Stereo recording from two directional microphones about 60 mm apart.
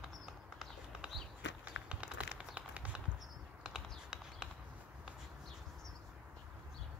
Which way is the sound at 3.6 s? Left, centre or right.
Centre.